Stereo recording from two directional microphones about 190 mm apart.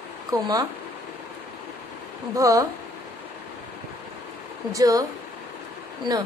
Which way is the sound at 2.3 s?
20° right (ahead or behind).